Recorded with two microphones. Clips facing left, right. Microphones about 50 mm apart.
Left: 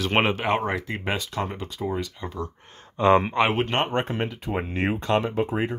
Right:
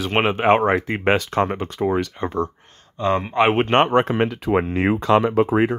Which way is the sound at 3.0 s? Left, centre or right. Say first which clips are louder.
Left 2 dB; centre.